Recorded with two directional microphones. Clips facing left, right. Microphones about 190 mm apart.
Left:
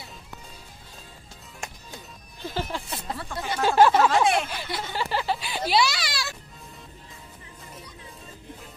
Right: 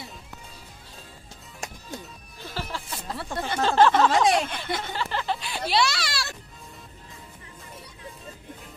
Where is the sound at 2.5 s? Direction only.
20° left (ahead or behind).